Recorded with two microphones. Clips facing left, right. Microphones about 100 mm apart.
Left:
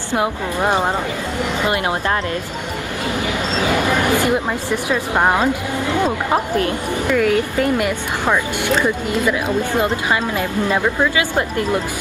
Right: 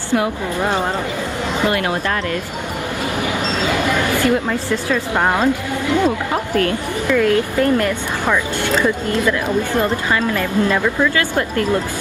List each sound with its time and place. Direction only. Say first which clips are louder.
0.1 s speech: right 1 dB; 20° left (ahead or behind)
4.1 s speech: even; 15° left (ahead or behind)